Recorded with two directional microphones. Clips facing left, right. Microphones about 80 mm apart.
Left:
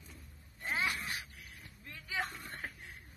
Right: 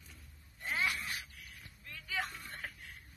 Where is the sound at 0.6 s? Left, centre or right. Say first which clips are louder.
Even; left.